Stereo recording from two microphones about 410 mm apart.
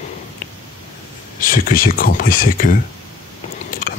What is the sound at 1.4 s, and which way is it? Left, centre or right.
Speech, left.